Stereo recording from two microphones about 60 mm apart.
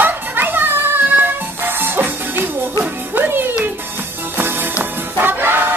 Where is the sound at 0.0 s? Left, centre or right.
Right.